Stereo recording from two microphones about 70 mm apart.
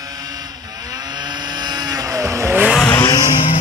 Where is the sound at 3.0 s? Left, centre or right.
Left.